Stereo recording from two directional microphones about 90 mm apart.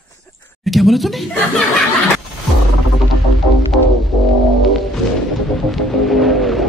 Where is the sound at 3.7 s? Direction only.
Centre (ahead or behind).